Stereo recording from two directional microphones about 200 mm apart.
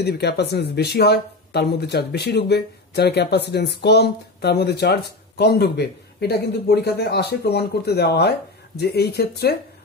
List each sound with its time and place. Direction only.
0.0 s speech: 55° left (ahead or behind)